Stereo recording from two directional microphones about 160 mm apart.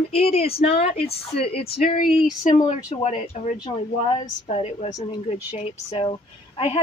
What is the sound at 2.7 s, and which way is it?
Speech, 45° left (ahead or behind).